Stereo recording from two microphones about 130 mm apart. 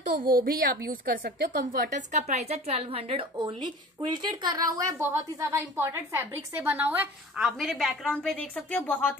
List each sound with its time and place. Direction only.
0.3 s a woman's voice: 90° right; by 7.1 s 15° right (ahead or behind)
7.3 s a woman's voice: centre (ahead or behind)